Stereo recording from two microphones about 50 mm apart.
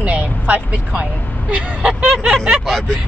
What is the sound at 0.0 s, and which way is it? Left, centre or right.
Vehicle, right.